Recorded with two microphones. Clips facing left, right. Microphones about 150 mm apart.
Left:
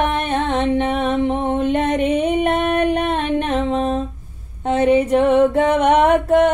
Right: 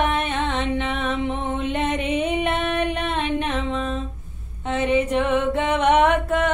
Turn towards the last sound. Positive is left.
turn(degrees=40)  # may be behind; listen again after turning